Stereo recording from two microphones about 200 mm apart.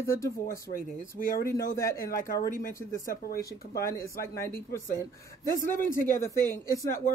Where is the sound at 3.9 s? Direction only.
15° left (ahead or behind).